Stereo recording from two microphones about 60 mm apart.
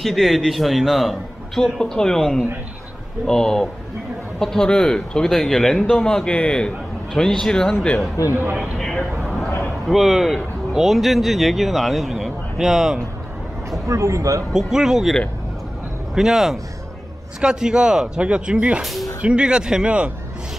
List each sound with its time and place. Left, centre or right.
0.0 s a man's voice: centre
8.2 s speech: left
8.7 s a sound: centre
9.8 s speech: centre
13.7 s speech: right
14.5 s speech: centre
16.2 s speech: centre
18.8 s a man's voice: centre
19.2 s speech: centre